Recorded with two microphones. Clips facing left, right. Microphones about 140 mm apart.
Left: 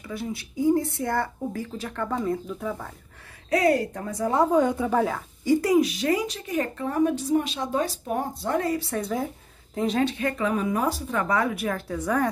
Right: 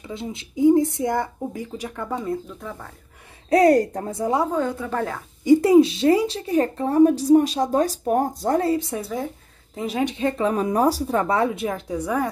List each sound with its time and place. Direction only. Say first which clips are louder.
0.0 s speech: even; 20° right (ahead or behind)
3.4 s speech: right 6 dB; 35° right (ahead or behind)
4.5 s a woman's voice: left 3 dB; 15° left (ahead or behind)
5.4 s speech: right 6 dB; 25° right (ahead or behind)
8.7 s speech: right 3 dB; 20° right (ahead or behind)
9.0 s a woman's voice: even; centre (ahead or behind)
10.0 s speech: right 3 dB; 20° right (ahead or behind)
10.3 s speech: right 4 dB; 35° right (ahead or behind); by 12.3 s 10° right (ahead or behind)